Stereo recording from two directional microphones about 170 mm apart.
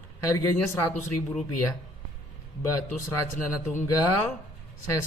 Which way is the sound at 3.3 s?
45° left (ahead or behind).